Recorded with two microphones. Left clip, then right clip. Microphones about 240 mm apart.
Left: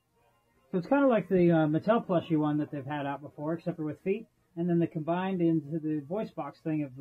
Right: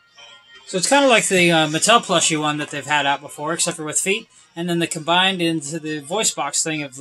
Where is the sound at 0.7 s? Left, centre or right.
Centre.